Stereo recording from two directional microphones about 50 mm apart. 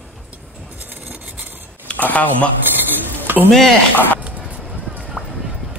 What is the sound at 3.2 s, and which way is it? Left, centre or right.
Stir, right.